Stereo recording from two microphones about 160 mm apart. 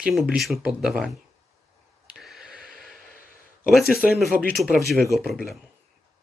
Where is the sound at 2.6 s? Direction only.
65° right (ahead or behind).